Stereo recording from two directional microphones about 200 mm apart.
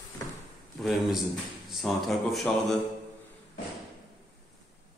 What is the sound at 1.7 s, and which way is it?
Speech, centre (ahead or behind).